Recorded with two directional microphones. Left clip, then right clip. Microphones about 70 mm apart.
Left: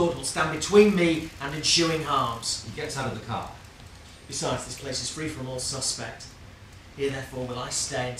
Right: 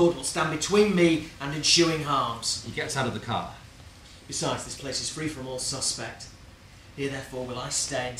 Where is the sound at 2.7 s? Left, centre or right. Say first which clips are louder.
Right 2 dB; right.